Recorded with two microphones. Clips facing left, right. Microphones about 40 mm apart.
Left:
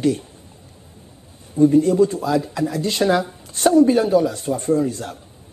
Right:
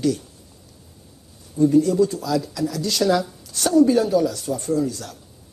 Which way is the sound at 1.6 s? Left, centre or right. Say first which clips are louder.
Left 2 dB; left.